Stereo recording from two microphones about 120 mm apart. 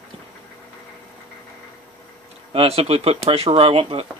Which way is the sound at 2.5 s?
55° right (ahead or behind).